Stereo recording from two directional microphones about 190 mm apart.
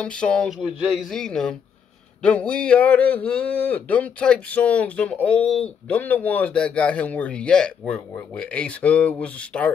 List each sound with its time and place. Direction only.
0.0 s speech: 5° left (ahead or behind)